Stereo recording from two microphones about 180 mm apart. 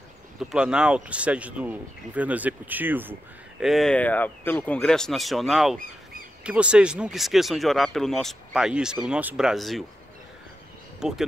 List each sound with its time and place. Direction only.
0.4 s speech: 5° right (ahead or behind)
11.0 s speech: centre (ahead or behind)